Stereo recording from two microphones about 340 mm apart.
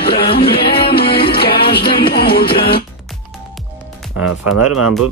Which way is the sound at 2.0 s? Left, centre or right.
Left.